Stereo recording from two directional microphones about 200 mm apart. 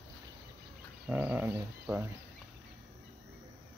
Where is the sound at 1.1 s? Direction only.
10° right (ahead or behind).